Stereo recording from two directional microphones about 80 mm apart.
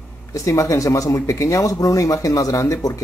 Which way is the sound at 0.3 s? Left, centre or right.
Left.